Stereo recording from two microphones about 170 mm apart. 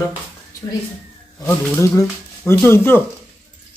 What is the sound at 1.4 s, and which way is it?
Speech, 15° left (ahead or behind).